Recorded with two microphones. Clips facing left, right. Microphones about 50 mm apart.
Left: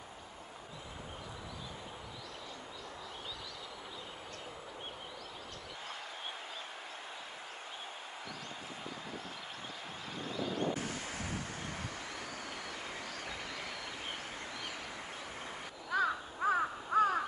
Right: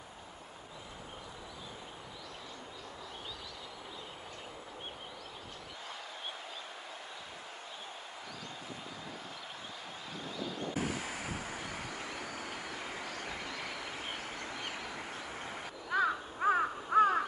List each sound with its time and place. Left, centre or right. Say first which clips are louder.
10.8 s waves: right 3 dB; centre
12.4 s vehicle: right 2 dB; centre
13.0 s vehicle: right 2 dB; right
16.1 s crow: right 2 dB; centre